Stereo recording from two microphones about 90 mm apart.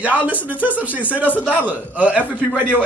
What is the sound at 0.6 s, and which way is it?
A man's voice, 15° right (ahead or behind).